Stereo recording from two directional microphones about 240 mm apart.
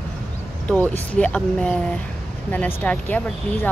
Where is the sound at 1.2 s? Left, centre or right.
Centre.